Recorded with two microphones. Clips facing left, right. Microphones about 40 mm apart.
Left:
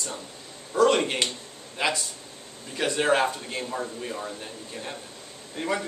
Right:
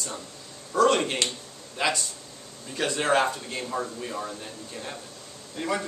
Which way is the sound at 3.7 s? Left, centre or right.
Centre.